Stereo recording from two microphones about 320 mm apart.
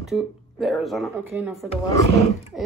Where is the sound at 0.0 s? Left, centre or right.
Centre.